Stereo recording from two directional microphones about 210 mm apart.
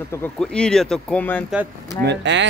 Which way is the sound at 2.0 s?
55° right (ahead or behind).